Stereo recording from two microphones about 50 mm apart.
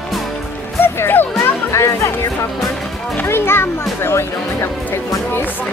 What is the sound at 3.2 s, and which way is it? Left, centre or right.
Speech, left.